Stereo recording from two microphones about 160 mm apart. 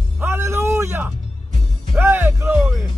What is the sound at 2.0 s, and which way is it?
Music, 15° right (ahead or behind).